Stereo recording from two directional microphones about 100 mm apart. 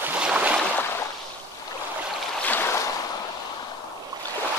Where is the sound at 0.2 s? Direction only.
10° right (ahead or behind).